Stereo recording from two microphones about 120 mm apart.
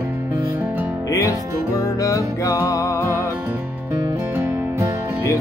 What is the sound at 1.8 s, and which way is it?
Music, 30° left (ahead or behind).